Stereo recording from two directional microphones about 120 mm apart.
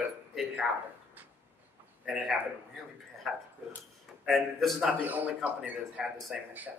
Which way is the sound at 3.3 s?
Centre (ahead or behind).